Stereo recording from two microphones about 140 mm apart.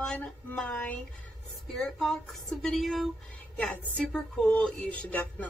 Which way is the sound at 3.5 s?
10° left (ahead or behind).